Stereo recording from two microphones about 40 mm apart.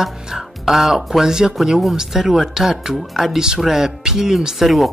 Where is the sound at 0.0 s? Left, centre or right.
Centre.